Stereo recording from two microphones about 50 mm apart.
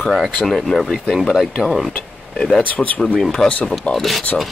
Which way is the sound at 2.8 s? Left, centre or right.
Centre.